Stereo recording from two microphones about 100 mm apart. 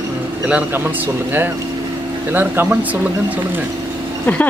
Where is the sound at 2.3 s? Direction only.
15° right (ahead or behind).